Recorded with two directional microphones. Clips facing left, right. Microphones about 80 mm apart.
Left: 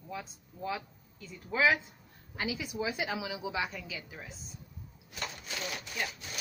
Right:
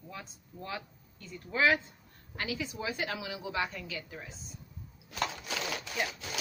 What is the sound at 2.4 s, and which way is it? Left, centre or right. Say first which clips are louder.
Speech: left 1 dB; centre.